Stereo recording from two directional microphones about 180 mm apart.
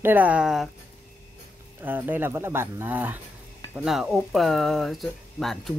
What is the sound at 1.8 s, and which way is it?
Speech, 10° right (ahead or behind).